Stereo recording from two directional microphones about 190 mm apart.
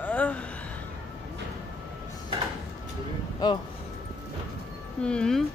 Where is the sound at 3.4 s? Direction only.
20° left (ahead or behind).